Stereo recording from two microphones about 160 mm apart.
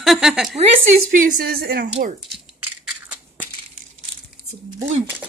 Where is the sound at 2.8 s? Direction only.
5° right (ahead or behind).